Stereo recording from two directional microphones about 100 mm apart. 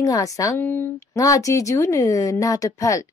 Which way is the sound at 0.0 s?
35° left (ahead or behind).